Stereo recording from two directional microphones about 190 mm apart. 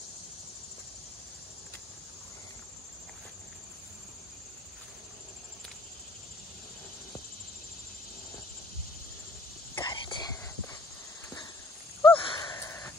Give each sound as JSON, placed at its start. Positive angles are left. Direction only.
{"t": 9.8, "sound": "whispering", "side_deg": 20}
{"t": 12.0, "sound": "wheeze", "side_deg": 20}